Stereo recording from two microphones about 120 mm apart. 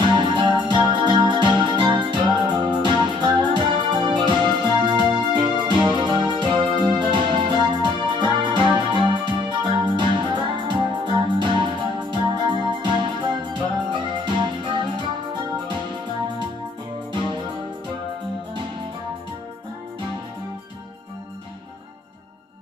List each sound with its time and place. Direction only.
0.0 s music: 40° right (ahead or behind)